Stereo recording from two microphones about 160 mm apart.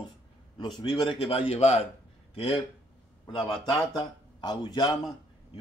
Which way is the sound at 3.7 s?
25° left (ahead or behind).